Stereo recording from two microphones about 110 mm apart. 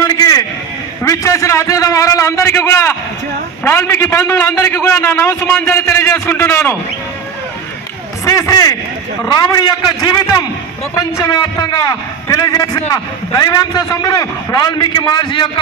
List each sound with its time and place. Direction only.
0.0 s a sound: 35° left (ahead or behind)
1.0 s a man's voice: 30° left (ahead or behind)
8.3 s a man's voice: 30° left (ahead or behind)
11.7 s a man's voice: 30° left (ahead or behind)